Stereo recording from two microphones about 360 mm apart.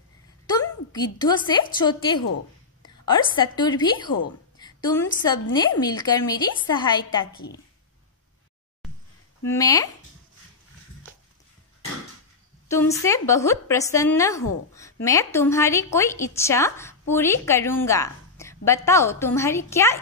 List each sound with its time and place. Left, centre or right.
1.1 s speech: centre
9.5 s speech: centre
12.6 s speech: centre